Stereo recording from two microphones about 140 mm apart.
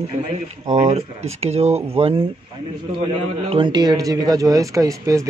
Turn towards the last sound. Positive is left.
turn(degrees=-25)  # may be behind; listen again after turning